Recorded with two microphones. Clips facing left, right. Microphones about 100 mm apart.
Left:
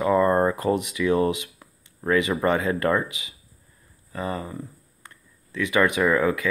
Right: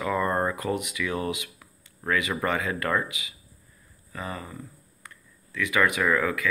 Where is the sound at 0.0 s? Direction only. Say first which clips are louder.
Left 6 dB; 30° left (ahead or behind).